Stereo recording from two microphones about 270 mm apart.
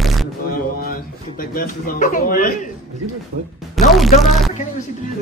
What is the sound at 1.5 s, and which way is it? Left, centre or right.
A man's voice, left.